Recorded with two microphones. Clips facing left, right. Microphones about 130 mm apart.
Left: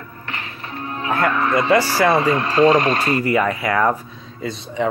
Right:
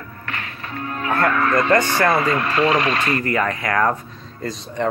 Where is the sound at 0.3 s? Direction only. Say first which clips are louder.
Even; 20° left (ahead or behind).